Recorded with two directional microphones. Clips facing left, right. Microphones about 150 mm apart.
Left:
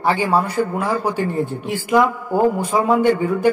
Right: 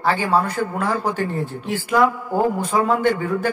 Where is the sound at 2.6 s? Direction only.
10° left (ahead or behind).